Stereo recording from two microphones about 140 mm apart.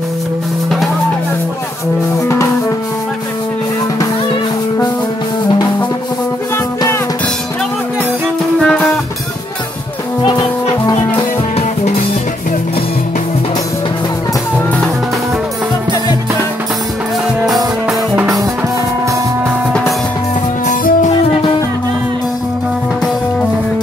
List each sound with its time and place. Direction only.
2.2 s music: 20° left (ahead or behind)
8.5 s music: 5° left (ahead or behind)
17.4 s music: centre (ahead or behind)
20.6 s music: 65° left (ahead or behind)